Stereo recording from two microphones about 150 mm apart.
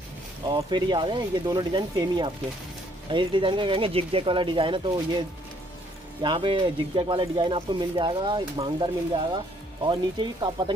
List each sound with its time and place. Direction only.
0.6 s speech: 30° right (ahead or behind)
6.2 s speech: 30° right (ahead or behind)